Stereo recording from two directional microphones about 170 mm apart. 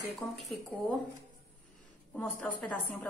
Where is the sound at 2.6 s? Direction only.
5° left (ahead or behind).